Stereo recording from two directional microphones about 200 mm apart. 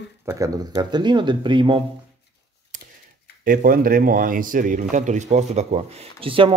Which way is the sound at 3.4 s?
45° right (ahead or behind).